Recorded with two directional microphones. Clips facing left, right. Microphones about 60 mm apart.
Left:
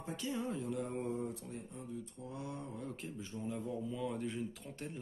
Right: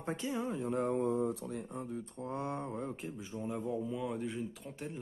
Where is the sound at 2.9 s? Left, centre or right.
Centre.